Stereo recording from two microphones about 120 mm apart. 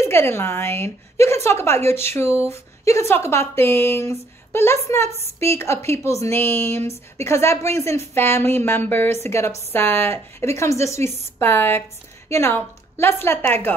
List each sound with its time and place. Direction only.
0.0 s speech: 20° left (ahead or behind)